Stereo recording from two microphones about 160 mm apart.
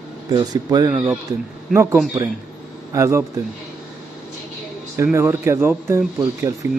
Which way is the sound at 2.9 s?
20° right (ahead or behind).